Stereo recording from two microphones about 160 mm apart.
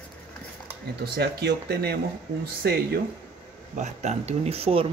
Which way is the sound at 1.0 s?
90° right.